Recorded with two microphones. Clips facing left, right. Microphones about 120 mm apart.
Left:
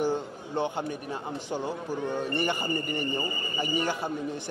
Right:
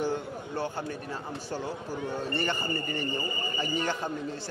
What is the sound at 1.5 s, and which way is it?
A man's voice, 15° left (ahead or behind).